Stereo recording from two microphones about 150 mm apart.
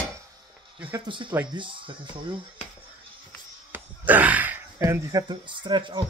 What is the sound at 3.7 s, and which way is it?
Speech, 10° right (ahead or behind).